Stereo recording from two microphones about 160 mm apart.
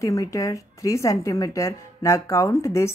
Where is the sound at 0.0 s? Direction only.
20° left (ahead or behind).